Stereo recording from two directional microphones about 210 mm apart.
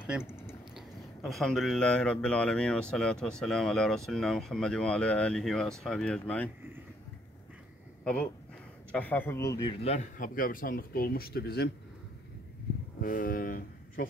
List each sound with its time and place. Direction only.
0.7 s speech: centre (ahead or behind)
8.0 s speech: 5° left (ahead or behind); by 9.9 s 20° left (ahead or behind)
9.9 s speech: 40° left (ahead or behind)
13.0 s speech: 40° left (ahead or behind)